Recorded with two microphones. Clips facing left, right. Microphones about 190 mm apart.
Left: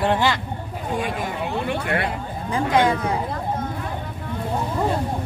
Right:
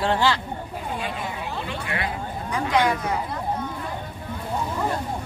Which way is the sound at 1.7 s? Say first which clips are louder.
Left 6 dB; 60° left (ahead or behind).